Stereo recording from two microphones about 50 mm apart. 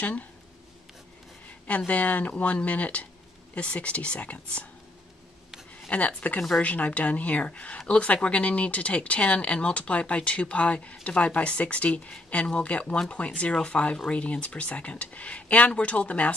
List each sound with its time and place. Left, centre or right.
0.0 s speech: left
1.9 s speech: left
5.9 s speech: left